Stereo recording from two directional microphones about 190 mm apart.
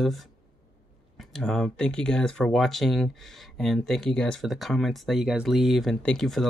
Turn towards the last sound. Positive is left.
turn(degrees=0)  # may be behind; listen again after turning